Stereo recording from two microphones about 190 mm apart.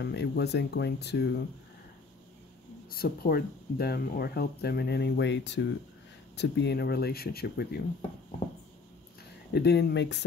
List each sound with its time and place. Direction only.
0.0 s speech: 60° left (ahead or behind)
2.9 s speech: 55° left (ahead or behind)
9.5 s speech: 60° left (ahead or behind)